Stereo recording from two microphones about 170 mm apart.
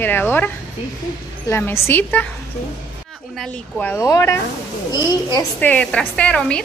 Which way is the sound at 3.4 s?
5° left (ahead or behind).